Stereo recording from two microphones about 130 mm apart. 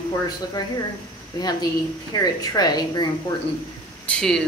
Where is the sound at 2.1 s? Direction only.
30° left (ahead or behind).